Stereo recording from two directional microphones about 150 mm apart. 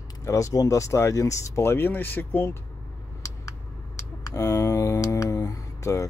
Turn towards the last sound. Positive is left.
turn(degrees=20)  # may be behind; listen again after turning